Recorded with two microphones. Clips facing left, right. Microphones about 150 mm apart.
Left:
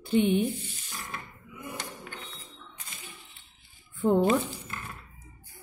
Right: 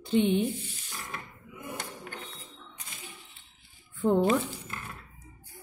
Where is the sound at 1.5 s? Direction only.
50° right (ahead or behind).